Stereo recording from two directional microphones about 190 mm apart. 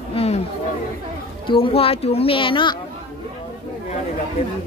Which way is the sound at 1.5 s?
30° left (ahead or behind).